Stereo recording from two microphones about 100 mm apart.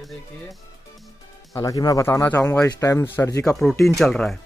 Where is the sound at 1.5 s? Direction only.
35° left (ahead or behind).